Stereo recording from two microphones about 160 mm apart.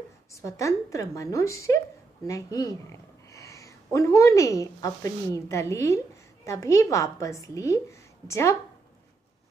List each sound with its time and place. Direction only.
0.3 s a woman's voice: 20° left (ahead or behind)